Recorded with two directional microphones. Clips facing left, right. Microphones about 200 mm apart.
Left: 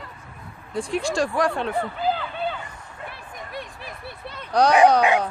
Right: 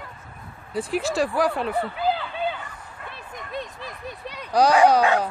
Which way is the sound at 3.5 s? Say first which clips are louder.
Right 4 dB; 20° right (ahead or behind).